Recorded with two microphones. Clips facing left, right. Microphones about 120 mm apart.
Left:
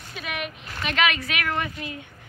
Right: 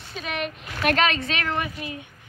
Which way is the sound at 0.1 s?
30° right (ahead or behind).